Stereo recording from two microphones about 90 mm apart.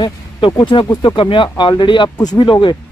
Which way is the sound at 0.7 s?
55° left (ahead or behind).